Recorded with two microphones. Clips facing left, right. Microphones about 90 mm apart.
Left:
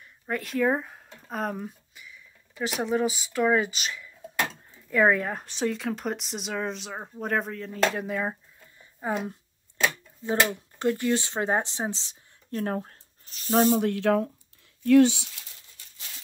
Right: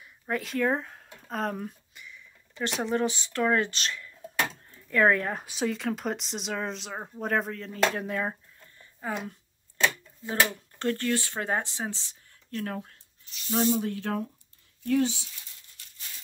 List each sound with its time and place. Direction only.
0.0 s speech: centre (ahead or behind)
9.8 s a sound: 10° left (ahead or behind)
10.8 s speech: 15° left (ahead or behind)
12.5 s speech: 35° left (ahead or behind); by 14.3 s 90° left
14.9 s speech: 75° left (ahead or behind)